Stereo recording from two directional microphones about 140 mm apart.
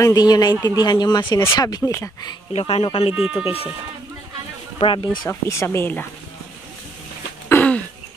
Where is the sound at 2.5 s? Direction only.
45° left (ahead or behind).